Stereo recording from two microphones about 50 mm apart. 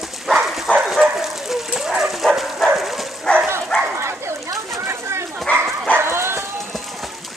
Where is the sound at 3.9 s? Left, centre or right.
Right.